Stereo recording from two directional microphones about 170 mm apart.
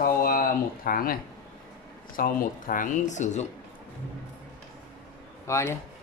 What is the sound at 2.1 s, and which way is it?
Speech, 55° left (ahead or behind).